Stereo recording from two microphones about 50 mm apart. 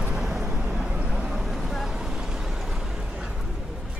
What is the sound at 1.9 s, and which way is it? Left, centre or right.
Vehicle, centre.